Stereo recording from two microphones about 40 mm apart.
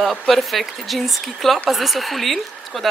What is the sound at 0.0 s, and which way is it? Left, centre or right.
Speech, centre.